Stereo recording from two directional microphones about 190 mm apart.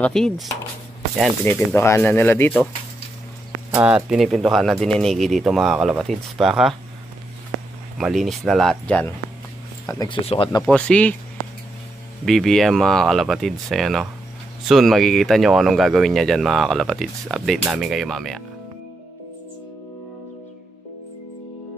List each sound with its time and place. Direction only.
0.0 s speech: 5° left (ahead or behind)
3.8 s speech: 5° right (ahead or behind)
8.0 s speech: centre (ahead or behind)
9.8 s speech: 25° left (ahead or behind)
10.7 s speech: 5° left (ahead or behind)
12.3 s speech: centre (ahead or behind)